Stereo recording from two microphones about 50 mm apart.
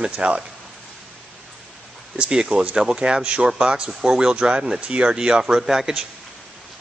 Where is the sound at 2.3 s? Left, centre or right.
Centre.